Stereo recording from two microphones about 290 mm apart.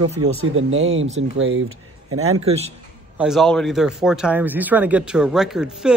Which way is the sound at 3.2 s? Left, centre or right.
Centre.